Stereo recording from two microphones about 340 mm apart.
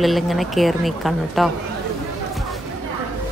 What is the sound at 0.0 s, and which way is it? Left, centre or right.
Speech, centre.